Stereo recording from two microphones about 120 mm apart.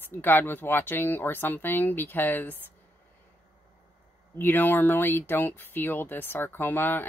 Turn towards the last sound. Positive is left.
turn(degrees=15)  # may be behind; listen again after turning